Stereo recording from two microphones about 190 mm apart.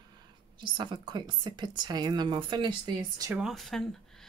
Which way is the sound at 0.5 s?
25° right (ahead or behind).